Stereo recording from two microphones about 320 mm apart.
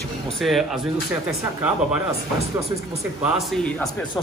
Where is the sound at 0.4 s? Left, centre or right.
Centre.